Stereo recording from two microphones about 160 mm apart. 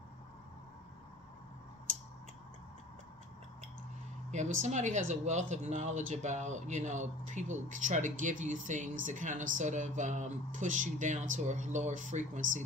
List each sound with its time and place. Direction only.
4.3 s speech: 50° right (ahead or behind)